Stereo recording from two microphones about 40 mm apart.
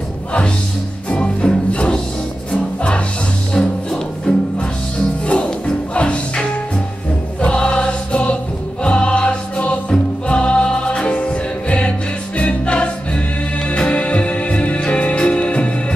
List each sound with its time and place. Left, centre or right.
1.0 s music: left
3.6 s music: centre
4.3 s music: left
7.4 s music: left